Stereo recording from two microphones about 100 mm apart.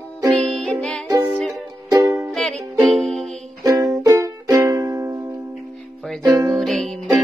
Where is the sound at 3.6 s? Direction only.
35° right (ahead or behind).